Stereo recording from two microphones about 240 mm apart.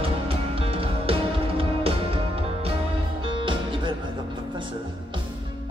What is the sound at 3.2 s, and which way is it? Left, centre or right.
Music, right.